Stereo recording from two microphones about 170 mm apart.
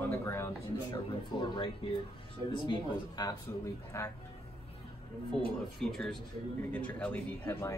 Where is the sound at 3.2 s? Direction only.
25° left (ahead or behind).